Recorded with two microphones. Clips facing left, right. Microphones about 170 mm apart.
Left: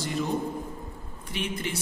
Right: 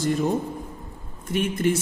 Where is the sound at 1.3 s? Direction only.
45° right (ahead or behind).